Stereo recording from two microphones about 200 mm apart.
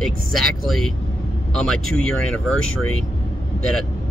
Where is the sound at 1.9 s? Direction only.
5° left (ahead or behind).